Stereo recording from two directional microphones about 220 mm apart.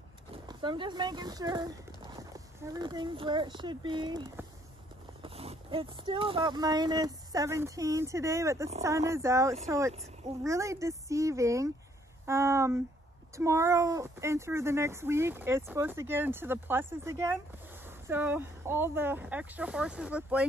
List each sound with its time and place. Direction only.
0.5 s speech: 20° right (ahead or behind); by 20.4 s 5° right (ahead or behind)